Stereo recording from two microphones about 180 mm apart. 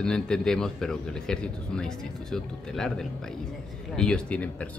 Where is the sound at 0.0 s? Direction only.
5° left (ahead or behind).